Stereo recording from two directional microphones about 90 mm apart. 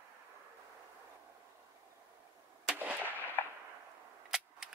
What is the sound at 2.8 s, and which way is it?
Artillery fire, 20° right (ahead or behind).